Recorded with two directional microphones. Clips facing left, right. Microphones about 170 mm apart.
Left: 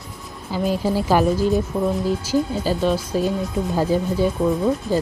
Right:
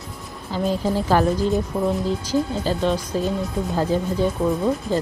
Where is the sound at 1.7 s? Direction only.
5° right (ahead or behind).